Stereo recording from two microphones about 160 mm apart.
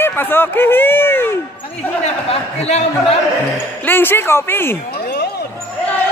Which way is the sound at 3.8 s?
15° left (ahead or behind).